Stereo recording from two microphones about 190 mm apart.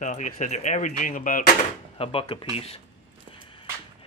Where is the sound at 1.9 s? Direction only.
30° left (ahead or behind).